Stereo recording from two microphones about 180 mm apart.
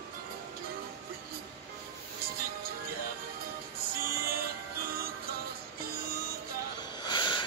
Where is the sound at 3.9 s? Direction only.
55° right (ahead or behind).